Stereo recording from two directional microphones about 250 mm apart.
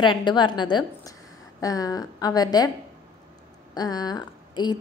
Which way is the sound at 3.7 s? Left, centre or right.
Centre.